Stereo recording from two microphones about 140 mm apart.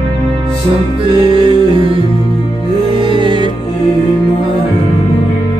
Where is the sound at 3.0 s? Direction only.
35° right (ahead or behind).